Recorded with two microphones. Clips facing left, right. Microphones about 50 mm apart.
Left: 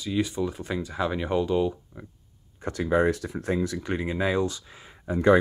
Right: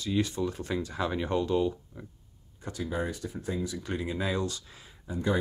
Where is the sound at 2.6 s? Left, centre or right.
Left.